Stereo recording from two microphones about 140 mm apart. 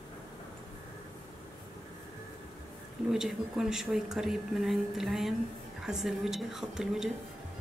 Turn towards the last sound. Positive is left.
turn(degrees=-5)  # may be behind; listen again after turning